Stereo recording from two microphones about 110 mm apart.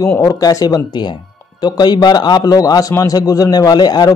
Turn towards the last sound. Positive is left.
turn(degrees=40)  # may be behind; listen again after turning